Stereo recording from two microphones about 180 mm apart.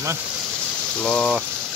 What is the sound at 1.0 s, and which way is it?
Speech, 5° left (ahead or behind).